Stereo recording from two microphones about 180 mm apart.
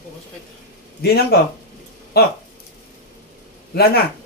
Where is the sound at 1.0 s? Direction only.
60° left (ahead or behind).